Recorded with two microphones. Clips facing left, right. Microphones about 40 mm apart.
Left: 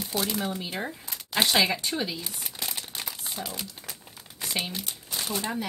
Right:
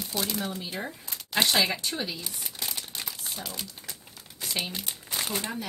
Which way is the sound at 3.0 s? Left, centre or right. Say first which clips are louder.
Left 4 dB; centre.